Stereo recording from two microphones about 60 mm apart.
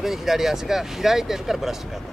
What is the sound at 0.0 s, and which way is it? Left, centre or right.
Speech, centre.